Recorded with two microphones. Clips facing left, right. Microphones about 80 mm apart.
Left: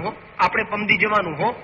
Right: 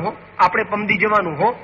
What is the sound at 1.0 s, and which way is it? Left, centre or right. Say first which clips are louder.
Speech: right 4 dB; centre.